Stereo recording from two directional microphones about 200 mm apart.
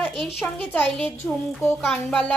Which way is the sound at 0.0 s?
Centre (ahead or behind).